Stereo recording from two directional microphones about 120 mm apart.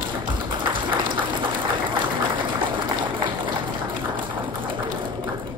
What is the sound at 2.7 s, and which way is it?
Run, 45° right (ahead or behind).